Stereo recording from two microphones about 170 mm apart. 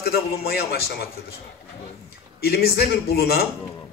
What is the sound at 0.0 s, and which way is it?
A man's voice, 65° left (ahead or behind).